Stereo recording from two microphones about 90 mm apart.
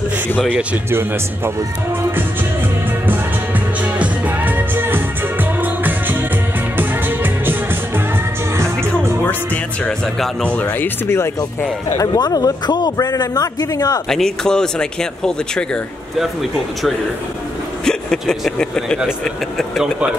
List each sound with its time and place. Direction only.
0.8 s speech: 25° right (ahead or behind)
3.1 s music: 20° right (ahead or behind)
9.8 s speech: 10° left (ahead or behind)
12.1 s a man's voice: 45° left (ahead or behind)
14.0 s speech: 5° left (ahead or behind)
17.8 s speech: 5° left (ahead or behind)